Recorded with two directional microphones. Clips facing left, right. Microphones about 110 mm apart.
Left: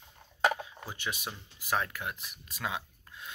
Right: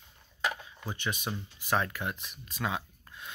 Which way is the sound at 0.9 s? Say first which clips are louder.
Right 5 dB; 5° left (ahead or behind).